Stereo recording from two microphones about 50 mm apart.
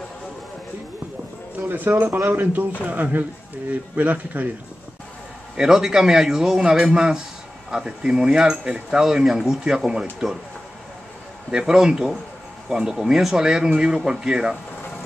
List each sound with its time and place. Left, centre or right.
1.7 s speech: right
5.6 s speech: centre
11.5 s speech: centre